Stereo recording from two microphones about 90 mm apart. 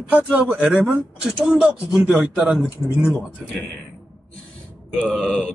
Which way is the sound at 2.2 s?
20° right (ahead or behind).